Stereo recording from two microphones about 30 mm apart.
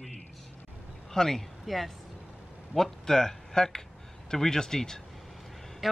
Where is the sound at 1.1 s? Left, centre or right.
Centre.